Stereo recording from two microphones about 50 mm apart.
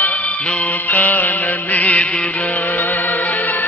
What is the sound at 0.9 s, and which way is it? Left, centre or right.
Music, left.